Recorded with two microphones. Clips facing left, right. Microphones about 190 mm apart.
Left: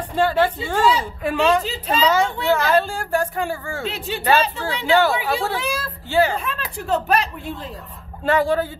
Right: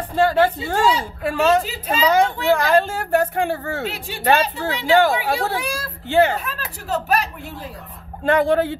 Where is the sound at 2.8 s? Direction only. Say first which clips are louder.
Right 3 dB; 65° right (ahead or behind).